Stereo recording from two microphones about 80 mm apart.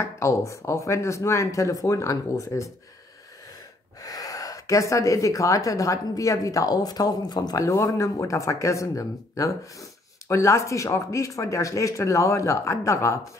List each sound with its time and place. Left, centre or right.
0.0 s speech: left
4.0 s speech: left